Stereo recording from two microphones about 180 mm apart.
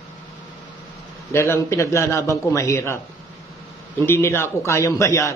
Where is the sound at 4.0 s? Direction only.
15° left (ahead or behind).